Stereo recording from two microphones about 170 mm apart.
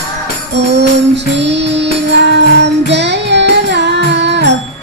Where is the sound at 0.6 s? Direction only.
90° right.